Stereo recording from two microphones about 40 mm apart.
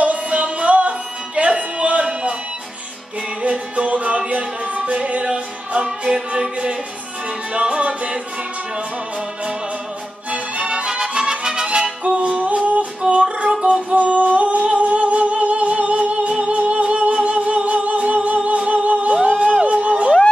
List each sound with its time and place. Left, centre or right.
0.0 s music: right
1.8 s a sound: right
3.4 s music: right
10.3 s music: right
10.9 s music: centre; by 20.1 s right